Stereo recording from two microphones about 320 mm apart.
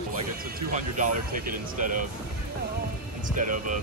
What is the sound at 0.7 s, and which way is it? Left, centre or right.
Speech, right.